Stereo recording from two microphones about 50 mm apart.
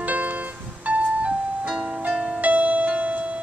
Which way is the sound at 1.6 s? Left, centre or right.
Centre.